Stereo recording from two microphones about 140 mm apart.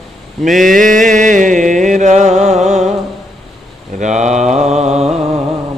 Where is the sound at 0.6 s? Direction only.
70° right (ahead or behind).